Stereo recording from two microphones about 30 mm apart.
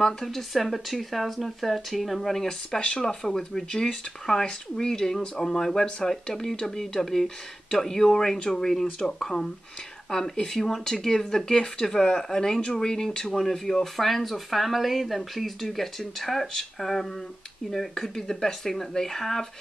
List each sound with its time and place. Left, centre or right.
0.3 s speech: centre
3.0 s speech: left